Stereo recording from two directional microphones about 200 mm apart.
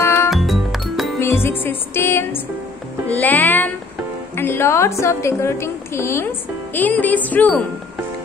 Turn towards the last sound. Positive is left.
turn(degrees=10)  # may be behind; listen again after turning